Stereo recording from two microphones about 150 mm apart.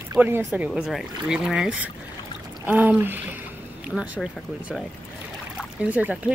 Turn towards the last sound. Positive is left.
turn(degrees=-10)  # may be behind; listen again after turning